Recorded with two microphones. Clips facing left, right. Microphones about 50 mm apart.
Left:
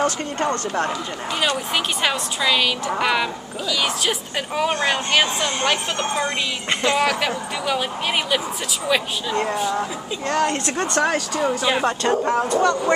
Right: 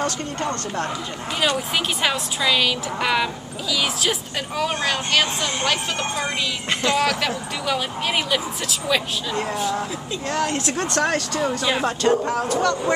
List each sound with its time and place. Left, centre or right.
2.0 s a woman's voice: centre
4.6 s speech: centre
6.8 s speech: centre